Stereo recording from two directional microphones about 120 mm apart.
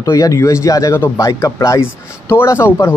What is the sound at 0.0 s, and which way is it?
Speech, 25° left (ahead or behind).